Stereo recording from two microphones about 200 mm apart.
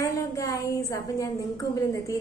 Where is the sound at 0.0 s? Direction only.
15° left (ahead or behind).